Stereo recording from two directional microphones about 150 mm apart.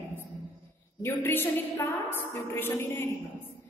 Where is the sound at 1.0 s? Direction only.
15° left (ahead or behind).